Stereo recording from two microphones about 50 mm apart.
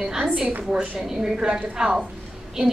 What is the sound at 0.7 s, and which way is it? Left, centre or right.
A woman's voice, centre.